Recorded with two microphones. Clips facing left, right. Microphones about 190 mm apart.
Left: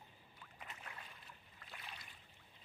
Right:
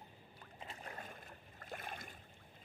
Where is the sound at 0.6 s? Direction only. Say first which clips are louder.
Right 5 dB; 35° right (ahead or behind); by 2.2 s 50° right (ahead or behind).